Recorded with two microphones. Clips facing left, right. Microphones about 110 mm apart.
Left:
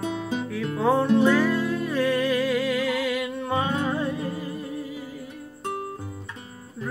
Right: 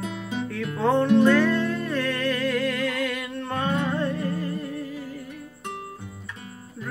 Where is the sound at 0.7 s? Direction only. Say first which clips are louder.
Right 1 dB; 5° left (ahead or behind).